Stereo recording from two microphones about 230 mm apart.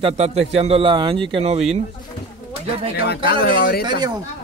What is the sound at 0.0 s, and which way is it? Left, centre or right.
A man's voice, right.